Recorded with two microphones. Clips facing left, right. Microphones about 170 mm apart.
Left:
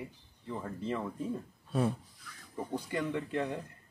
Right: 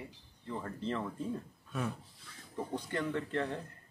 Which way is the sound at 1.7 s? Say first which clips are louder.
Left 7 dB; 35° left (ahead or behind).